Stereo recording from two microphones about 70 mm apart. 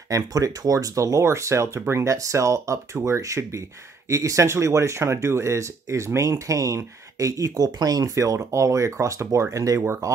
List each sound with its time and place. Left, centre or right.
0.1 s speech: right